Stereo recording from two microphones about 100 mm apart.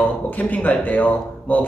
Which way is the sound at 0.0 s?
15° left (ahead or behind).